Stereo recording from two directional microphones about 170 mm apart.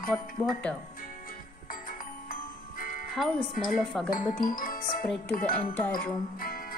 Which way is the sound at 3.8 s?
Centre (ahead or behind).